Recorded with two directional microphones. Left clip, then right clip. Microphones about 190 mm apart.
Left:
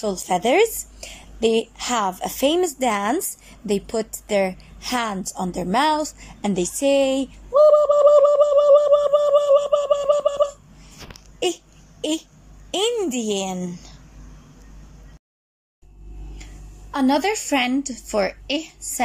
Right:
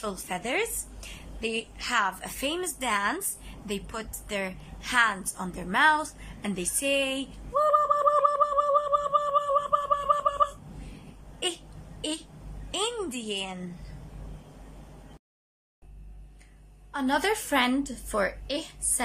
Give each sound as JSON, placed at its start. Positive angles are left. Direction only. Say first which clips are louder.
{"t": 0.0, "sound": "a woman's voice", "louder": "left 12 dB", "side_deg": 25}
{"t": 12.7, "sound": "a woman's voice", "louder": "left 9 dB", "side_deg": 20}
{"t": 16.9, "sound": "a woman's voice", "louder": "left 6 dB", "side_deg": 15}